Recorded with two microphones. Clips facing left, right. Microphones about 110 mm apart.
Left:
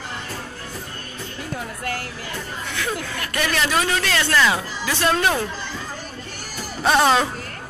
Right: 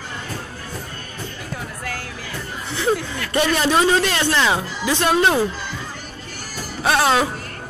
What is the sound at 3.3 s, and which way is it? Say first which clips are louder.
Speech: right 5 dB; 25° right (ahead or behind).